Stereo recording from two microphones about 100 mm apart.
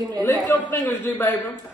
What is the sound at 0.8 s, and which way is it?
Speech, 20° left (ahead or behind).